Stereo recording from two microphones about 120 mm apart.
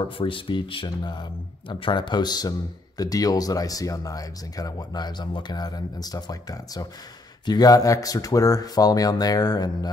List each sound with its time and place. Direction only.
0.2 s speech: 45° left (ahead or behind)